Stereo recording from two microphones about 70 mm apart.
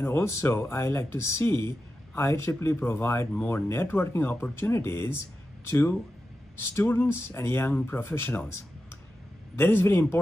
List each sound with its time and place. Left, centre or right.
0.0 s speech: left
9.6 s speech: left